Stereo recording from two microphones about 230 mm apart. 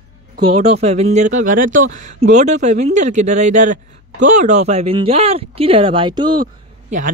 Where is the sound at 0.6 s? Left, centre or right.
Right.